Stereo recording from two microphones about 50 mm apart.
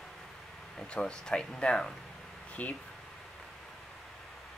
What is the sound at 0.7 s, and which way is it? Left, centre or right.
Speech, centre.